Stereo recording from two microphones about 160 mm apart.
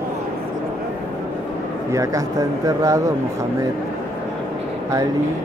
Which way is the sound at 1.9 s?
20° right (ahead or behind).